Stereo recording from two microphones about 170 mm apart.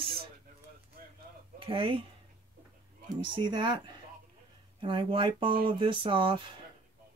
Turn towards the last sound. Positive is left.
turn(degrees=-30)  # may be behind; listen again after turning